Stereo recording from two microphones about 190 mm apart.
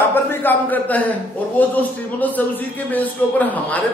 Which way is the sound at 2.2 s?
10° left (ahead or behind).